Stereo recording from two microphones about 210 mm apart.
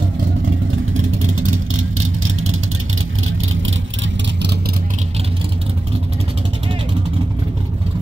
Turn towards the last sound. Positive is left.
turn(degrees=-25)  # may be behind; listen again after turning